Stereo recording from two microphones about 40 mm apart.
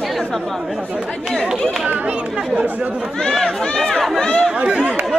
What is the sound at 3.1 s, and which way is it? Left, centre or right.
Speech, centre.